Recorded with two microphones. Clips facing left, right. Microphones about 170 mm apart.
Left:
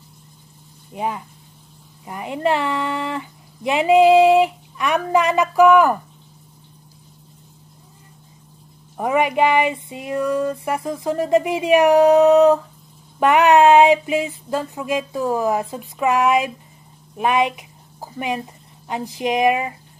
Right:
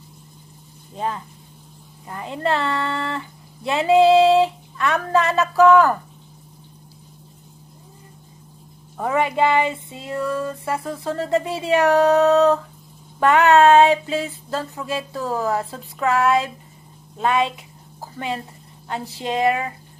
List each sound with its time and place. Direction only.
0.9 s speech: 15° left (ahead or behind)
8.9 s speech: 15° left (ahead or behind)